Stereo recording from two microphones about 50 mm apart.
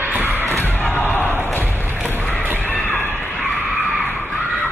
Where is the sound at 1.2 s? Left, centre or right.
Right.